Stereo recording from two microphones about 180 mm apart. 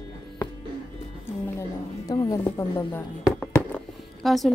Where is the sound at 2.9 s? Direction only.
10° left (ahead or behind).